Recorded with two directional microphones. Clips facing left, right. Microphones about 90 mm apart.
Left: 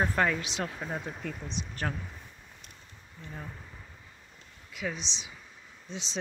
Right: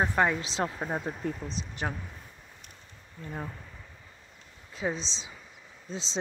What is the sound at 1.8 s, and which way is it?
Speech, 15° right (ahead or behind).